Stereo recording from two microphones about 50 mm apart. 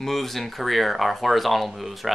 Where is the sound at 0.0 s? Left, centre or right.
Centre.